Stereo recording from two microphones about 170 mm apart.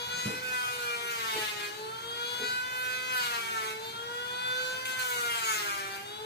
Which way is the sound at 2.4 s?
75° left (ahead or behind).